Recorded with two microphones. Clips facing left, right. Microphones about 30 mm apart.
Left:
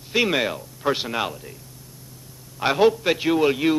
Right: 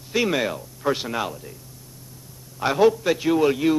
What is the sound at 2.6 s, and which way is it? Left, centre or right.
A man's voice, left.